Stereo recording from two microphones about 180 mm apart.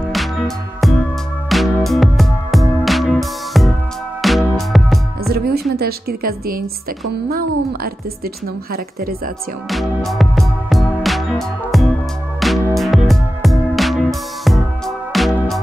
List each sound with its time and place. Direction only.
1.5 s music: centre (ahead or behind)
5.2 s a sound: 55° right (ahead or behind)
7.2 s a woman's voice: 55° right (ahead or behind)
9.7 s music: centre (ahead or behind)
15.1 s music: centre (ahead or behind)